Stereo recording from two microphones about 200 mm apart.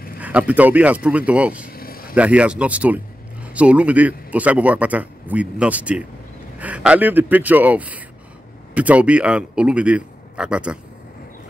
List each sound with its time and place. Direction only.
0.2 s speech: 5° right (ahead or behind)
1.7 s vehicle: 50° left (ahead or behind)
2.1 s a man's voice: 5° right (ahead or behind)